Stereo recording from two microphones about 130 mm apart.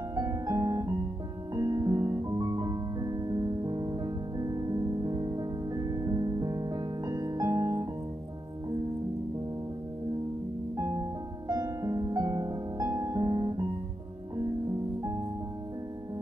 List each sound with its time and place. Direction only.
0.1 s piano: 30° right (ahead or behind)
1.5 s music: 30° right (ahead or behind)
11.4 s music: 30° right (ahead or behind)